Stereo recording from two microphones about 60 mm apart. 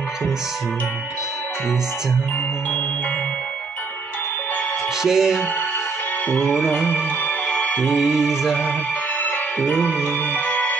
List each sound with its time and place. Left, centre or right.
5.0 s music: centre
6.7 s music: left
7.2 s music: left
7.8 s music: centre
10.0 s music: left